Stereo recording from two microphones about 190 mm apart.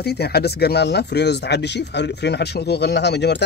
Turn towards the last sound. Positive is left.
turn(degrees=65)  # may be behind; listen again after turning